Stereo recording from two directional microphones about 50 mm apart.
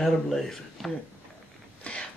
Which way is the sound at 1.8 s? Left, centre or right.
Left.